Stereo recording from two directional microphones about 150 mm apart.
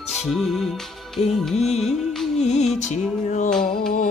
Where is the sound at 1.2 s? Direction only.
50° left (ahead or behind).